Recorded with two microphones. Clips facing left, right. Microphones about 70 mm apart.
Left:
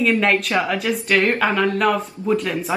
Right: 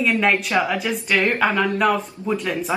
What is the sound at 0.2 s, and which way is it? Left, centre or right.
Speech, centre.